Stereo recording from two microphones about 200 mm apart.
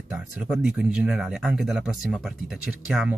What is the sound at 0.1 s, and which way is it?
Speech, 5° right (ahead or behind).